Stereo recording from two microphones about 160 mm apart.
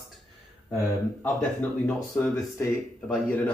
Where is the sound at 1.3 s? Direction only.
5° left (ahead or behind).